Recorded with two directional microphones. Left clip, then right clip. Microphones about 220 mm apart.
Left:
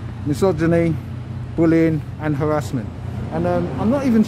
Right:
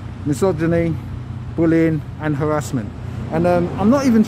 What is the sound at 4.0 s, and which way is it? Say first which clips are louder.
Speech: right 2 dB; 10° right (ahead or behind).